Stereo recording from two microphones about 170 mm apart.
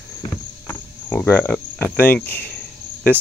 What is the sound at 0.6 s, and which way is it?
Cricket, 10° left (ahead or behind).